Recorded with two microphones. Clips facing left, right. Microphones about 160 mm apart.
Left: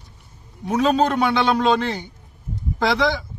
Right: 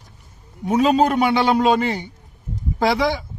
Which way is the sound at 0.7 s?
15° right (ahead or behind).